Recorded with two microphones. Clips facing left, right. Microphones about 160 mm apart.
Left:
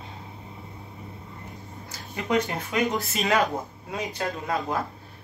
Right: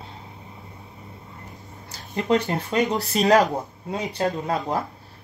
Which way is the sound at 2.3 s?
35° right (ahead or behind).